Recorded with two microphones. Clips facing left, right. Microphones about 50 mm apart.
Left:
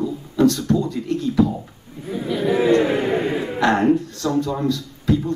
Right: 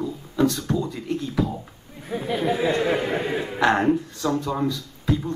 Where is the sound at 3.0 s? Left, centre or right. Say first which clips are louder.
Left 5 dB; centre.